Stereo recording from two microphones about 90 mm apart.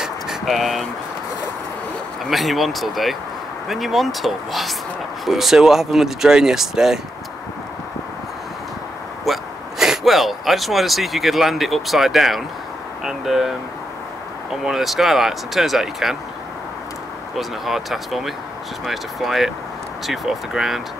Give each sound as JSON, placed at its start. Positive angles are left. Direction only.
{"t": 0.0, "sound": "vehicle", "side_deg": -5}
{"t": 2.2, "sound": "speech", "side_deg": 0}
{"t": 9.2, "sound": "speech", "side_deg": -5}
{"t": 14.6, "sound": "speech", "side_deg": -5}
{"t": 17.4, "sound": "speech", "side_deg": 0}